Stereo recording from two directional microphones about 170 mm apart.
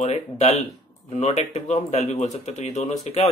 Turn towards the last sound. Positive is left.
turn(degrees=40)  # may be behind; listen again after turning